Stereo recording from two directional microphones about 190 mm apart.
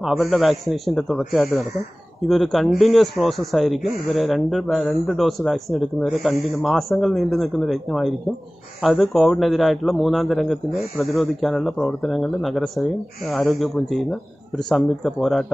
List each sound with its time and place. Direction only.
0.0 s speech: centre (ahead or behind)